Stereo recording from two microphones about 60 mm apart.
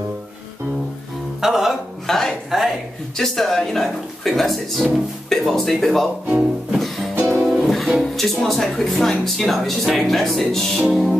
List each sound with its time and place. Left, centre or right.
1.4 s music: centre
2.0 s a sound: centre
3.2 s speech: centre
6.7 s music: centre
7.2 s music: right
7.4 s music: centre
8.0 s speech: centre